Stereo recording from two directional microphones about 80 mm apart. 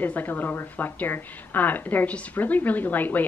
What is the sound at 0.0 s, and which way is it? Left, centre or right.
A woman's voice, left.